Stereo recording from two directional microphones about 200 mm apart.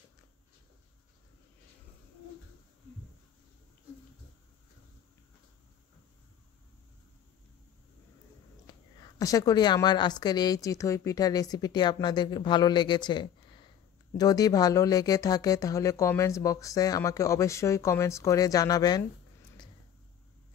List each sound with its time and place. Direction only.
8.6 s a woman's voice: 20° left (ahead or behind)